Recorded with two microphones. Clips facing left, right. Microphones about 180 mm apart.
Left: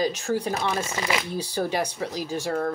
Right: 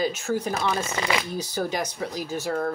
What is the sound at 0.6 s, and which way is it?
Speech, 25° left (ahead or behind).